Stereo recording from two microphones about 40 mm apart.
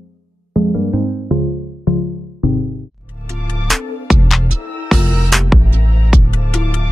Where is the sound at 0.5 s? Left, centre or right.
Centre.